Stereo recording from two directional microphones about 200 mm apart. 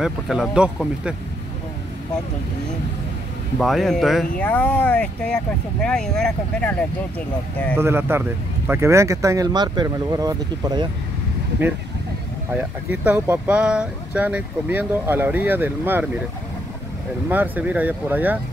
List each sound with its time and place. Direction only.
0.0 s speech: centre (ahead or behind)
3.5 s speech: centre (ahead or behind)
7.8 s speech: 10° right (ahead or behind)
12.9 s speech: 5° right (ahead or behind)
17.3 s speech: 10° right (ahead or behind)